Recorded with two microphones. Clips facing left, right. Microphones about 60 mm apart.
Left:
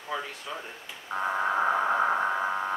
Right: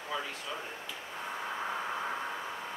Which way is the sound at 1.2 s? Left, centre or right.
Left.